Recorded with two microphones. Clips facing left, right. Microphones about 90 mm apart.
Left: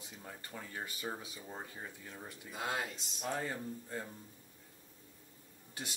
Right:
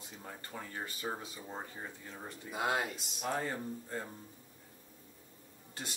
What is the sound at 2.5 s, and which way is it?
Speech, 10° right (ahead or behind).